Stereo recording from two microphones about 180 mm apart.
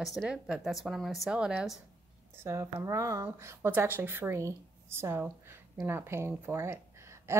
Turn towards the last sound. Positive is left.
turn(degrees=-15)  # may be behind; listen again after turning